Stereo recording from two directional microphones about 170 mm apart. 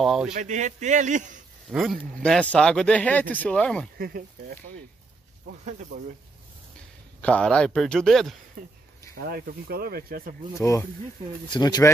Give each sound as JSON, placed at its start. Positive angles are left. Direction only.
{"t": 0.0, "sound": "speech", "side_deg": 0}
{"t": 0.3, "sound": "a man's voice", "side_deg": -45}
{"t": 1.7, "sound": "speech", "side_deg": 0}
{"t": 4.0, "sound": "speech", "side_deg": -60}
{"t": 7.2, "sound": "speech", "side_deg": 5}
{"t": 9.1, "sound": "speech", "side_deg": -65}
{"t": 10.6, "sound": "speech", "side_deg": 20}